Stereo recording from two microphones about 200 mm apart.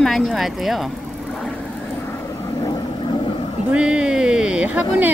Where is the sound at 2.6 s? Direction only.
20° left (ahead or behind).